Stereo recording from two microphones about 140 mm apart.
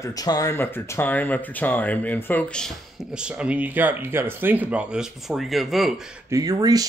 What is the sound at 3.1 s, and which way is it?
Speech, 5° right (ahead or behind).